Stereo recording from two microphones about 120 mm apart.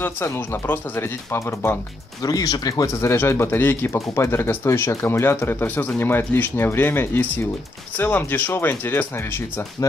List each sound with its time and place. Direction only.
0.0 s speech: 20° left (ahead or behind)
2.2 s speech: 30° left (ahead or behind)